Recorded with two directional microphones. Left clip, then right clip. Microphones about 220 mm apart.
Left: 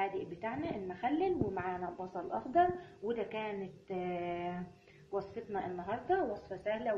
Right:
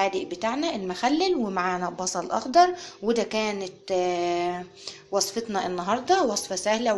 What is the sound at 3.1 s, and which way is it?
A woman's voice, 30° right (ahead or behind).